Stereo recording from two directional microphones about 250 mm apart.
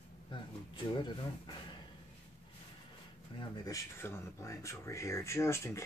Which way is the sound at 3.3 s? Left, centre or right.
Centre.